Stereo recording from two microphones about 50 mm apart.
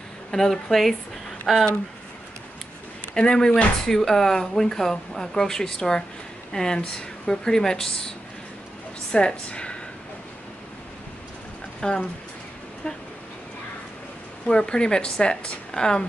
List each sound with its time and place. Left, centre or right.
0.3 s speech: centre
3.2 s speech: centre
9.1 s speech: centre
11.8 s speech: centre
14.5 s a woman's voice: centre